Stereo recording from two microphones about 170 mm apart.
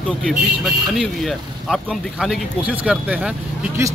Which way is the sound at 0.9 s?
Centre (ahead or behind).